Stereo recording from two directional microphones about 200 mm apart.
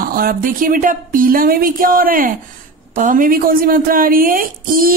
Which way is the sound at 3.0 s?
45° right (ahead or behind).